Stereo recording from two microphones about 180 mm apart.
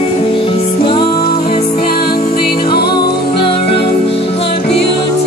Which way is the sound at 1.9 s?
60° left (ahead or behind).